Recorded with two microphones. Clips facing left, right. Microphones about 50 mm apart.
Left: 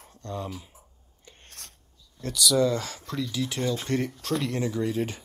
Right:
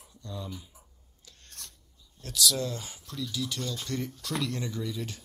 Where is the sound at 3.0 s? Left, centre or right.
Left.